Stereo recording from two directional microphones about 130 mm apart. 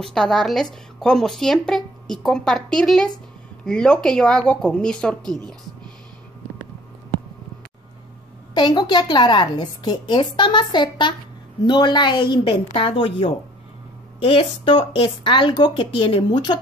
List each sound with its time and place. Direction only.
0.0 s speech: 5° left (ahead or behind)
8.5 s a woman's voice: 35° left (ahead or behind)